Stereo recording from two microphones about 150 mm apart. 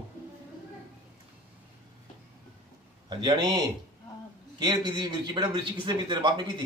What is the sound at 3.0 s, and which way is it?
Speech, 30° right (ahead or behind).